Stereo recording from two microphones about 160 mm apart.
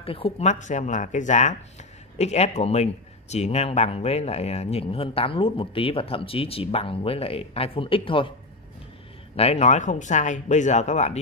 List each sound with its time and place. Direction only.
0.0 s speech: 35° left (ahead or behind)
9.4 s speech: 40° left (ahead or behind)